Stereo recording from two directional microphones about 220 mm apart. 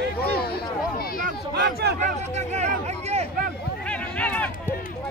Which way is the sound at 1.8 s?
45° right (ahead or behind).